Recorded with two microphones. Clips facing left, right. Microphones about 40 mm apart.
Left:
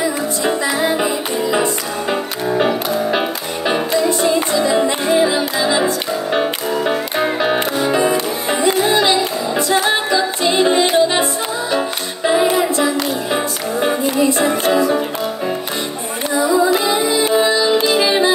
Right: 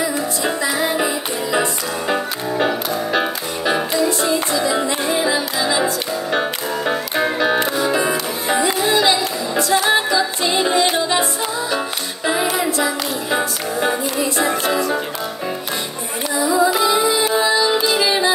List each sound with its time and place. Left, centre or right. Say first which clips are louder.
0.4 s music: left 3 dB; centre
12.5 s music: left 3 dB; centre
16.7 s music: left 1 dB; centre